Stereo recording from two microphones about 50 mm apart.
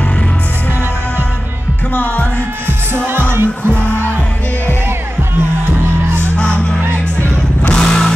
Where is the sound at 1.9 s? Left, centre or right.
Left.